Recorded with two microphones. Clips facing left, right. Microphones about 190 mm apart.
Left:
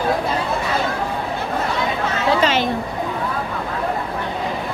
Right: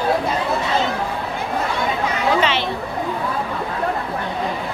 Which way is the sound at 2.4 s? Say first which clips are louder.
Left 2 dB; 45° left (ahead or behind).